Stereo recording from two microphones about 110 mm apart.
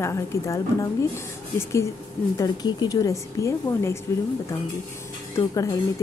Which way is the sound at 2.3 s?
35° left (ahead or behind).